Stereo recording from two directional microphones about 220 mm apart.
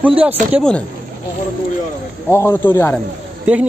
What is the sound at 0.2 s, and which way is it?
Speech, 5° right (ahead or behind).